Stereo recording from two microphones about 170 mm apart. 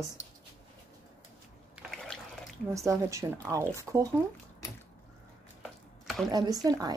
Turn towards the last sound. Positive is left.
turn(degrees=-20)  # may be behind; listen again after turning